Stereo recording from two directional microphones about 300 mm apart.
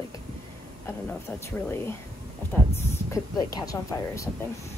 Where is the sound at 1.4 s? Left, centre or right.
Centre.